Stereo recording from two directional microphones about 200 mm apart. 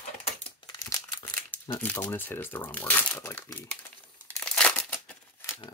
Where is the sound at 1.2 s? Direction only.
10° left (ahead or behind).